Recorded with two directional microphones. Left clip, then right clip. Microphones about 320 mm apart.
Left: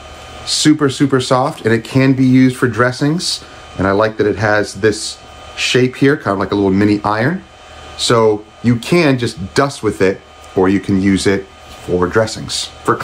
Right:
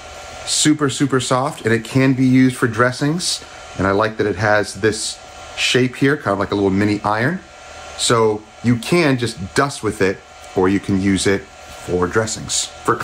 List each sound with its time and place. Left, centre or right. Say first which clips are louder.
0.5 s speech: left 4 dB; centre